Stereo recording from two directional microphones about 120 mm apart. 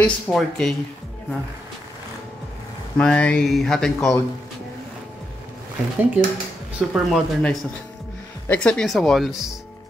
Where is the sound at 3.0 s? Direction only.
10° left (ahead or behind).